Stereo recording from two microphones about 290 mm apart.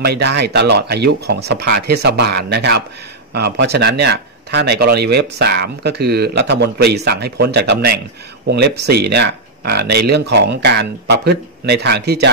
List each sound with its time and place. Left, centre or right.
0.0 s speech: right